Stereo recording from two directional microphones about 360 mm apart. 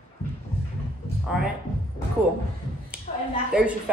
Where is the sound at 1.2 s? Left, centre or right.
Centre.